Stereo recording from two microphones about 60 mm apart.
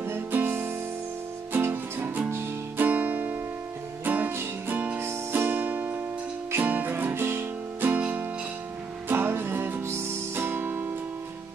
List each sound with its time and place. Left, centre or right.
0.0 s music: right
8.0 s music: right
9.1 s music: right